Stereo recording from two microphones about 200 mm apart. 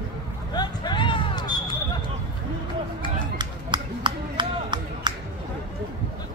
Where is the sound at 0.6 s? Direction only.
25° left (ahead or behind).